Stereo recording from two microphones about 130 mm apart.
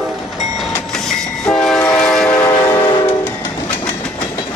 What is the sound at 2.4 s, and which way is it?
Train, 30° left (ahead or behind).